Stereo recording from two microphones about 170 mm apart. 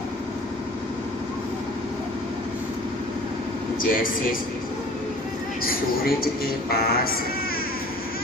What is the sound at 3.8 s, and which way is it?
Speech, 55° left (ahead or behind).